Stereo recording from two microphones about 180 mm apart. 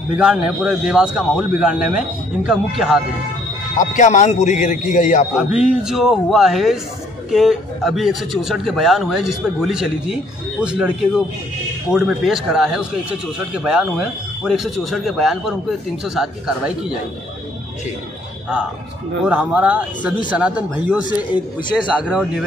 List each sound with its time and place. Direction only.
0.2 s speech: 5° right (ahead or behind)
3.7 s speech: 45° left (ahead or behind)
5.3 s speech: 5° right (ahead or behind)
19.2 s speech: 5° right (ahead or behind)
22.0 s speech: 5° right (ahead or behind)